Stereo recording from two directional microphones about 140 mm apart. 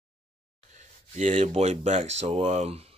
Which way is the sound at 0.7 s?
60° right (ahead or behind).